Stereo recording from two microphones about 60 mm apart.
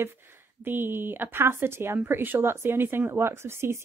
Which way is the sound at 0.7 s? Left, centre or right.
Right.